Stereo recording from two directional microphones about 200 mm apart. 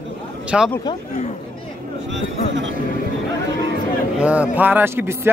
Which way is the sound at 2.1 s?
65° right (ahead or behind).